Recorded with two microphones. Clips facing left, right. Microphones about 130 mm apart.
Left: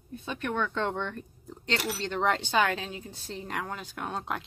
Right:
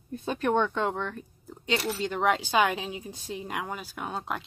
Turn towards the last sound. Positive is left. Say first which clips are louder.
# even
turn(degrees=0)  # may be behind; listen again after turning